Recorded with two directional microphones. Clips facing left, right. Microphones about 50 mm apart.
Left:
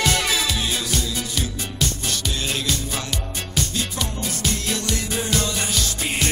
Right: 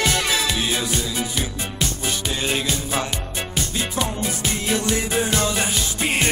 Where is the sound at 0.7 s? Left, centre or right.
Right.